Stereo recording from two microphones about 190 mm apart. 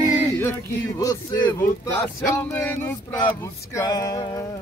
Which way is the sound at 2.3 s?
15° left (ahead or behind).